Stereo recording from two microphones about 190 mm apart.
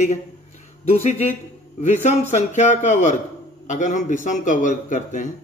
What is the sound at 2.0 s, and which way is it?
A man's voice, 35° left (ahead or behind).